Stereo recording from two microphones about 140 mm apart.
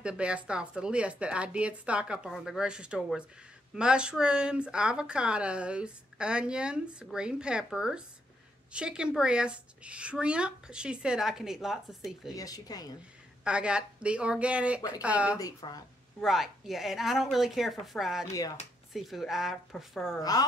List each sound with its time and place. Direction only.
0.0 s speech: 10° right (ahead or behind)
12.4 s speech: 25° left (ahead or behind)
13.4 s speech: 5° right (ahead or behind)
15.3 s speech: 25° left (ahead or behind)
16.2 s a woman's voice: centre (ahead or behind)
18.3 s speech: 25° left (ahead or behind)
18.9 s a woman's voice: centre (ahead or behind)
20.2 s speech: 25° left (ahead or behind)